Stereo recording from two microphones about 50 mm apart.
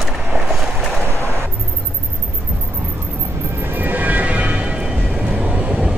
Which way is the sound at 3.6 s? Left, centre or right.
Right.